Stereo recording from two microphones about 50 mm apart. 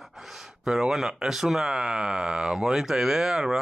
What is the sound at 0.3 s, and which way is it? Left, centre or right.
Speech, centre.